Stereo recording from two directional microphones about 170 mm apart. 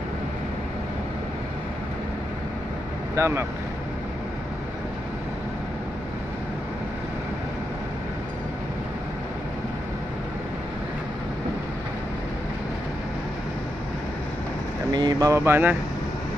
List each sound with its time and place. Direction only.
3.2 s speech: 15° right (ahead or behind)
14.9 s speech: 25° right (ahead or behind)